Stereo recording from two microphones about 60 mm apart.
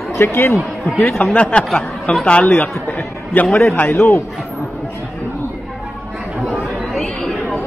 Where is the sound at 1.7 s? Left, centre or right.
Centre.